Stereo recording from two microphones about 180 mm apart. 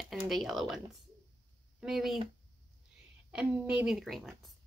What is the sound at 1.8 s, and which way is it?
Speech, centre (ahead or behind).